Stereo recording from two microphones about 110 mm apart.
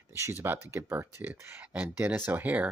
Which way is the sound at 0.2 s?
20° right (ahead or behind).